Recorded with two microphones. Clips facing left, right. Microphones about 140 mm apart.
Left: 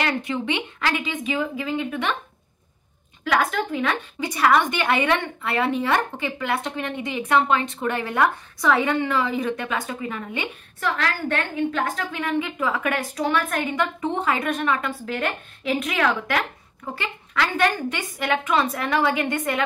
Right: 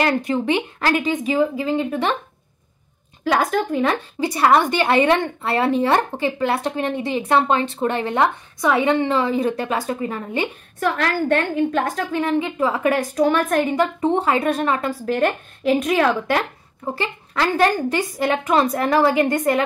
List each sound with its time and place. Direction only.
0.0 s a woman's voice: 40° right (ahead or behind)
3.3 s a woman's voice: 35° right (ahead or behind)
13.1 s a woman's voice: 45° right (ahead or behind)